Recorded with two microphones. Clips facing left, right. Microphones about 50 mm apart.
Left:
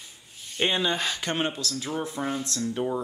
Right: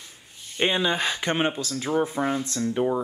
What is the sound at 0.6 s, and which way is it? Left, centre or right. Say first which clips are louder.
Speech: right 2 dB; centre.